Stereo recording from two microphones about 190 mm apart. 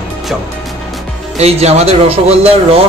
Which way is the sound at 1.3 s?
35° right (ahead or behind).